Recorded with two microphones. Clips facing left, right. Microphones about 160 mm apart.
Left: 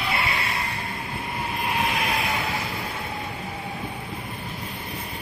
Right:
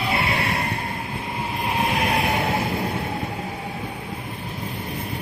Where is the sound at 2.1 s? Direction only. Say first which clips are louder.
Right 4 dB; 50° right (ahead or behind).